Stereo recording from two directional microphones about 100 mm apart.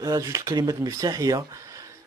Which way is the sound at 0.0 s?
35° right (ahead or behind).